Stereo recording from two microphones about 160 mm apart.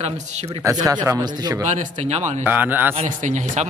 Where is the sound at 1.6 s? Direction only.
50° right (ahead or behind).